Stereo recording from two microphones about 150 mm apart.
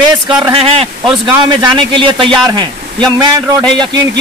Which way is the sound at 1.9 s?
35° right (ahead or behind).